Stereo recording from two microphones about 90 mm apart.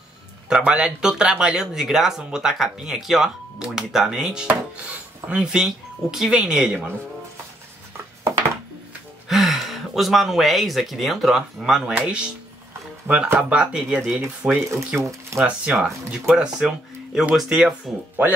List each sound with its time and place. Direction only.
0.5 s speech: 10° right (ahead or behind)
9.3 s speech: centre (ahead or behind)
13.0 s speech: 15° right (ahead or behind)
15.0 s speech: 35° right (ahead or behind)
15.3 s speech: 10° right (ahead or behind)